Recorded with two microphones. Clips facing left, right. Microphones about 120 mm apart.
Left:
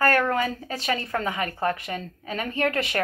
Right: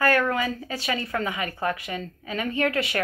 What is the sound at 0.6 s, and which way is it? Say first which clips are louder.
Speech: left 1 dB; 45° left (ahead or behind).